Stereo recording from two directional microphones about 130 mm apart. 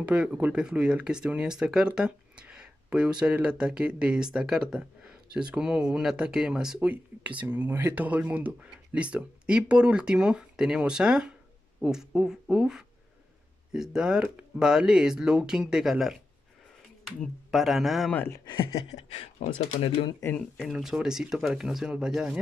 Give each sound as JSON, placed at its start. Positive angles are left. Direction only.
{"t": 0.0, "sound": "speech", "side_deg": -10}
{"t": 17.2, "sound": "speech", "side_deg": 0}
{"t": 18.1, "sound": "speech", "side_deg": 15}
{"t": 18.4, "sound": "speech", "side_deg": 35}
{"t": 18.9, "sound": "speech", "side_deg": 55}
{"t": 20.1, "sound": "speech", "side_deg": 25}
{"t": 20.6, "sound": "speech", "side_deg": -5}